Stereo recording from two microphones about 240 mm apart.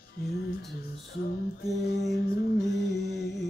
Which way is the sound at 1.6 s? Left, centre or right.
Left.